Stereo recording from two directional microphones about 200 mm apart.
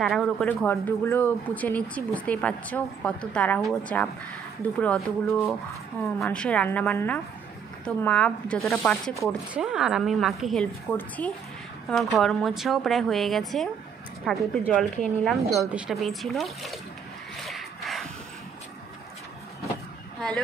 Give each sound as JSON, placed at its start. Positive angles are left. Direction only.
{"t": 0.0, "sound": "speech", "side_deg": 0}
{"t": 17.5, "sound": "a sound", "side_deg": 0}
{"t": 20.2, "sound": "speech", "side_deg": 0}